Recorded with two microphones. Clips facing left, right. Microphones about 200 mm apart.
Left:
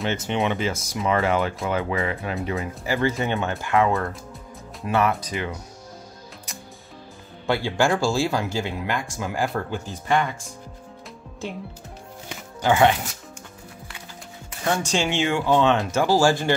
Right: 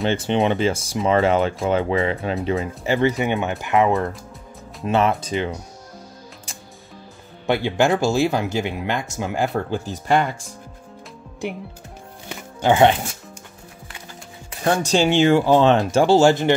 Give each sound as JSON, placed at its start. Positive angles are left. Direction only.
{"t": 0.1, "sound": "speech", "side_deg": -30}
{"t": 7.4, "sound": "speech", "side_deg": -20}
{"t": 9.6, "sound": "speech", "side_deg": -30}
{"t": 12.6, "sound": "speech", "side_deg": -25}
{"t": 14.6, "sound": "speech", "side_deg": -40}